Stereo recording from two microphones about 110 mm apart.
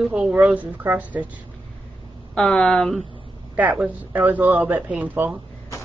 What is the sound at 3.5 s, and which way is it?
A woman's voice, 10° right (ahead or behind).